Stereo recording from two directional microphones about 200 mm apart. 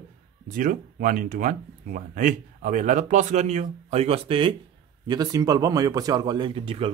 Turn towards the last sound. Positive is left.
turn(degrees=-25)  # may be behind; listen again after turning